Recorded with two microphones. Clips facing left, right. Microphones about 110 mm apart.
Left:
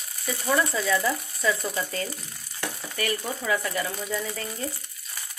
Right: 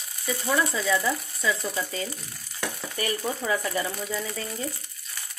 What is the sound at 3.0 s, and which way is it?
Stir, 25° right (ahead or behind).